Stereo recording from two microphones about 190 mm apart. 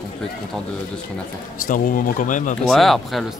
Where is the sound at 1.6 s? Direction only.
45° left (ahead or behind).